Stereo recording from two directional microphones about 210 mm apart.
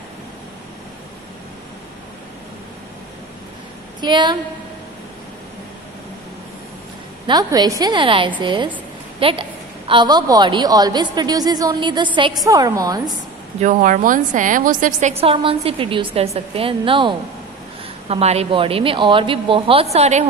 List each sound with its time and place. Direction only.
4.0 s a woman's voice: 20° right (ahead or behind)
7.2 s a woman's voice: 20° right (ahead or behind)
13.6 s a woman's voice: 40° right (ahead or behind)